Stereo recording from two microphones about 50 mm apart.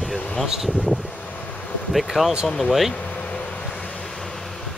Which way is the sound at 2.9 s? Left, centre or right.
Left.